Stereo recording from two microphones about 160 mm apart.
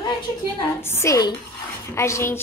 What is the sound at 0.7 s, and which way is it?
Speech, 15° left (ahead or behind).